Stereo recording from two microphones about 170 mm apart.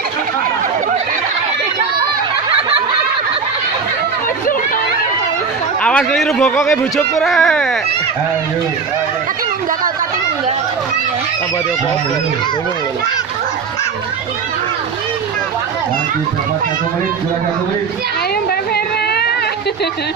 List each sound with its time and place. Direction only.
2.5 s snicker: 35° right (ahead or behind)
5.9 s speech: 5° left (ahead or behind)